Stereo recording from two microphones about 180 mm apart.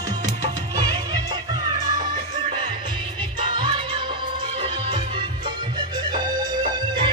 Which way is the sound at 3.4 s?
25° right (ahead or behind).